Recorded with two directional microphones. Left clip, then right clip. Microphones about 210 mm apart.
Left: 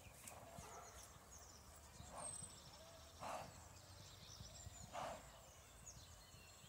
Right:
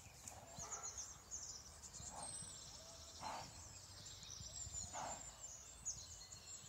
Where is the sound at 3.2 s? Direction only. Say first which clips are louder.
Right 1 dB; 40° left (ahead or behind).